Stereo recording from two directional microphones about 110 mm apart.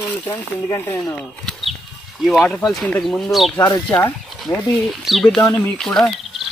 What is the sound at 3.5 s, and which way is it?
Speech, 25° left (ahead or behind).